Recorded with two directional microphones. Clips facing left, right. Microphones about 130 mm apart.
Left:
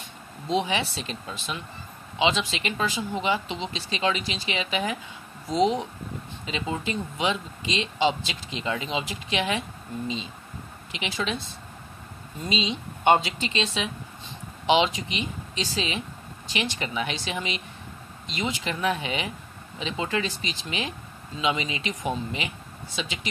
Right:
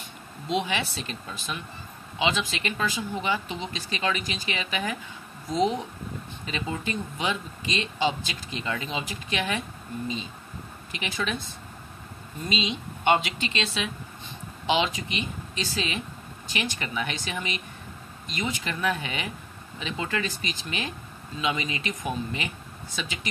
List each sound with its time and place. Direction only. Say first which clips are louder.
0.5 s speech: left 2 dB; 30° left (ahead or behind)
12.4 s speech: left 1 dB; 25° left (ahead or behind)